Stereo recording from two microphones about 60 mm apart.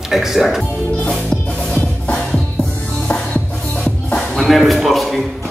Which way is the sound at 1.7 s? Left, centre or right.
Centre.